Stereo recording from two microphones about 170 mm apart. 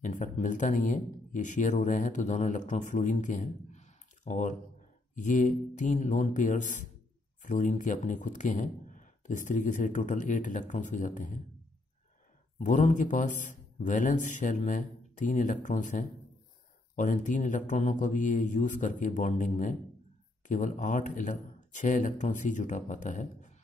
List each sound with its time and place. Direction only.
0.0 s speech: 45° left (ahead or behind)
12.5 s speech: 45° left (ahead or behind)